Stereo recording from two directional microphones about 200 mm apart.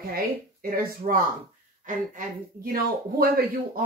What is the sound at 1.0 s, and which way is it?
Speech, 40° right (ahead or behind).